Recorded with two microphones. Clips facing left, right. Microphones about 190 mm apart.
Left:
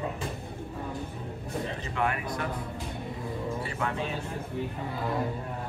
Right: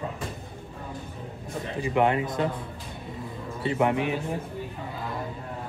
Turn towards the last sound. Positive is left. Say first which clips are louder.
# right 8 dB
turn(degrees=-15)  # may be behind; listen again after turning